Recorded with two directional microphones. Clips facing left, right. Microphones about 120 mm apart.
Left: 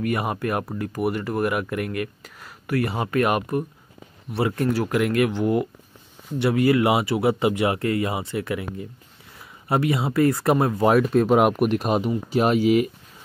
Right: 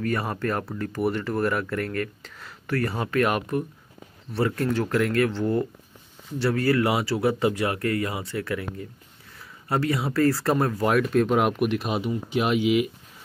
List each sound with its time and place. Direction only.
0.0 s speech: 15° left (ahead or behind)
4.4 s speech: 20° left (ahead or behind)
4.6 s speech: 10° left (ahead or behind)
11.0 s speech: 35° left (ahead or behind)